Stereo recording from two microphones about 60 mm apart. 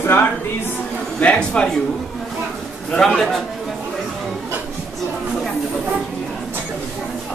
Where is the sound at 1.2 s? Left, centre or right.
Centre.